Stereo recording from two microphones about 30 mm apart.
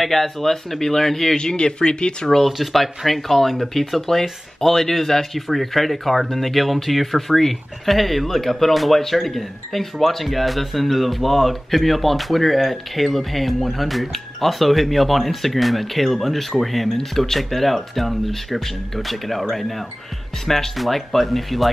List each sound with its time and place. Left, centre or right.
0.0 s speech: centre
1.4 s speech: left
2.4 s speech: centre